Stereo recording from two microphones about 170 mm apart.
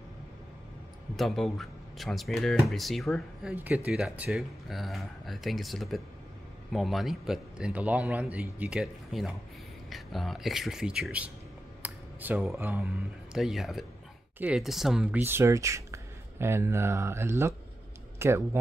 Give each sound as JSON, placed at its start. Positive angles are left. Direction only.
{"t": 1.1, "sound": "a man's voice", "side_deg": 0}
{"t": 11.8, "sound": "a sound", "side_deg": -10}
{"t": 12.5, "sound": "speech", "side_deg": -15}
{"t": 13.3, "sound": "a man's voice", "side_deg": 0}